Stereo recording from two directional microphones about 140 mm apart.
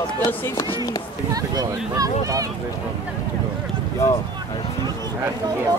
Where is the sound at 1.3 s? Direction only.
25° right (ahead or behind).